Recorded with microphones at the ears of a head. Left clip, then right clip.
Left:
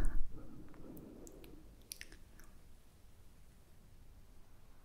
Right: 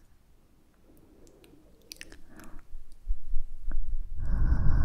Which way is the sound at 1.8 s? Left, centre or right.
Right.